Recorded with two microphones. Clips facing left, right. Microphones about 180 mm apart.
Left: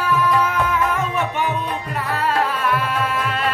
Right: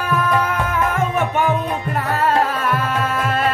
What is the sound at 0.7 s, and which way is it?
Music, 50° right (ahead or behind).